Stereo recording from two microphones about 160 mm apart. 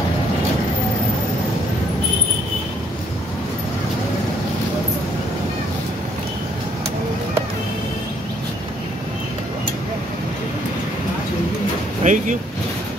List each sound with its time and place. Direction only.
12.0 s speech: 50° right (ahead or behind)